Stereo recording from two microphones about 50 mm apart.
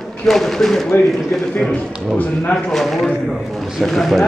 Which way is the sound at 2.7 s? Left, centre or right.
Centre.